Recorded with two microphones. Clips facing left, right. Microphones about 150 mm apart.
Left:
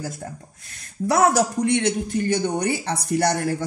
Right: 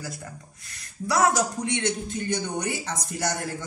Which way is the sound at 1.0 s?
55° left (ahead or behind).